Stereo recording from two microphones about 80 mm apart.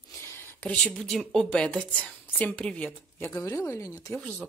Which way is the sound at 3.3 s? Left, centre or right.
Left.